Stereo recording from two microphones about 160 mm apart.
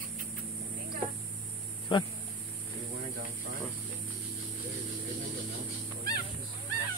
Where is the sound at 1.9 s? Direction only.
30° left (ahead or behind).